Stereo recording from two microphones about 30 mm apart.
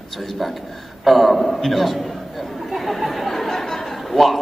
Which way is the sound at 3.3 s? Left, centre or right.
Centre.